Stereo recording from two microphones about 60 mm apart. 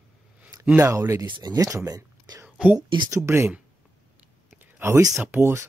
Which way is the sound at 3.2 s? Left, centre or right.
Right.